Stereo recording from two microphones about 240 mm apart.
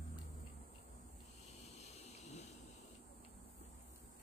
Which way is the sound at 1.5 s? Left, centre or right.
Left.